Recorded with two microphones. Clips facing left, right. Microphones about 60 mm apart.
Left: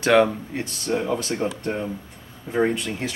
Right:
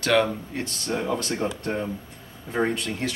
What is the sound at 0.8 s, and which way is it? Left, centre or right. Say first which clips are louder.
Speech: left 3 dB; centre.